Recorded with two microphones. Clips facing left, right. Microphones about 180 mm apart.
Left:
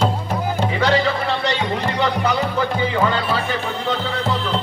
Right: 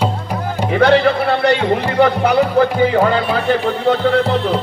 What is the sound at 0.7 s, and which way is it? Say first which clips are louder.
Music: right 8 dB; 60° right (ahead or behind).